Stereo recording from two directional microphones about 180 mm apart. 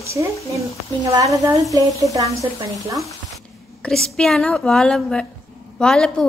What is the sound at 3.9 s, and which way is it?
A woman's voice, 5° left (ahead or behind).